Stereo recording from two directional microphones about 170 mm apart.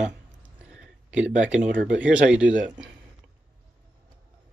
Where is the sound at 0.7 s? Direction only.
5° right (ahead or behind).